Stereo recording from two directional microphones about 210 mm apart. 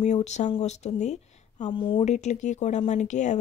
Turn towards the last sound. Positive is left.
turn(degrees=35)  # may be behind; listen again after turning